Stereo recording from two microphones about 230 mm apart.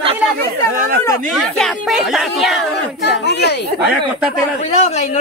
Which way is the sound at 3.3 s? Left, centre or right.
Left.